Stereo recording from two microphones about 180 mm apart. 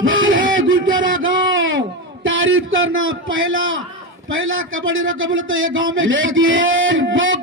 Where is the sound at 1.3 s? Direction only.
90° right.